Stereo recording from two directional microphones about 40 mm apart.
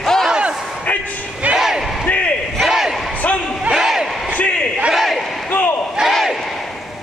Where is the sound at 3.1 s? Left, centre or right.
Left.